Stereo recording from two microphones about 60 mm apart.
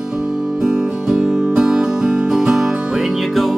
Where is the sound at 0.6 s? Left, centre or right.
Centre.